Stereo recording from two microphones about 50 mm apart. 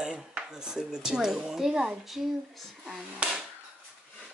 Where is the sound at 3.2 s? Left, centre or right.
Right.